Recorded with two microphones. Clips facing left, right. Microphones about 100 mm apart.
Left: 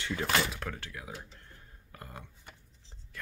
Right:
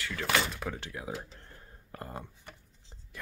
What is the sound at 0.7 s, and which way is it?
Speech, 20° right (ahead or behind).